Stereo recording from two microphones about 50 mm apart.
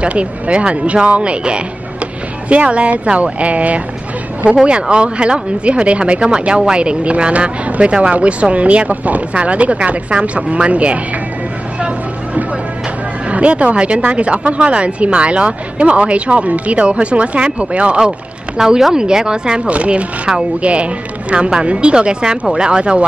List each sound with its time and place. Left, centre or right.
0.0 s speech: right
13.3 s speech: right
18.6 s speech: centre